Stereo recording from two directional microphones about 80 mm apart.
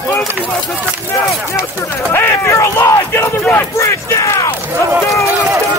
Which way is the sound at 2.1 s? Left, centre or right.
Left.